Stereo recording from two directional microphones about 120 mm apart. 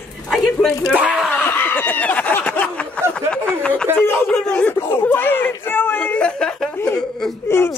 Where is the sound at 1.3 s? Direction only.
15° left (ahead or behind).